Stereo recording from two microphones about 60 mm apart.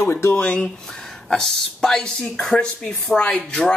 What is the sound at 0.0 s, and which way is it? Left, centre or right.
Speech, left.